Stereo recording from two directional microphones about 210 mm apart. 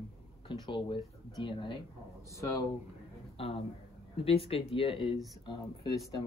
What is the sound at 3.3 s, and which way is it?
Speech, 25° left (ahead or behind).